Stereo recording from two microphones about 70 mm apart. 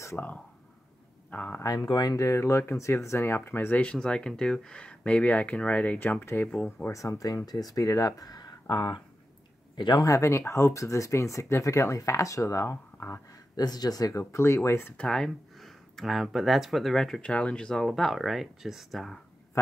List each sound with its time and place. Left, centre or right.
0.2 s speech: left
1.6 s speech: left
2.1 s speech: left
3.8 s speech: centre
6.0 s speech: left
6.9 s speech: left
10.0 s speech: left
13.6 s speech: left
14.1 s speech: left
15.0 s speech: centre